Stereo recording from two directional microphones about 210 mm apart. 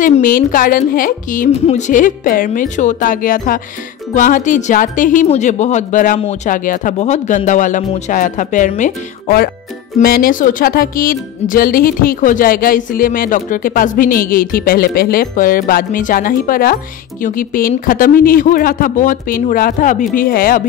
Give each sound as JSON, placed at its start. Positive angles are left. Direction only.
{"t": 0.0, "sound": "speech", "side_deg": 40}